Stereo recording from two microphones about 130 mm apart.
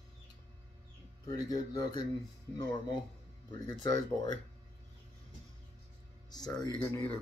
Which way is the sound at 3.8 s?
30° left (ahead or behind).